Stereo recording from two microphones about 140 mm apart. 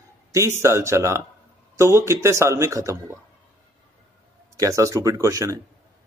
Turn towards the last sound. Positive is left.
turn(degrees=-20)  # may be behind; listen again after turning